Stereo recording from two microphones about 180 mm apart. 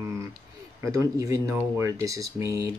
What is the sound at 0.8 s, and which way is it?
Speech, 20° right (ahead or behind).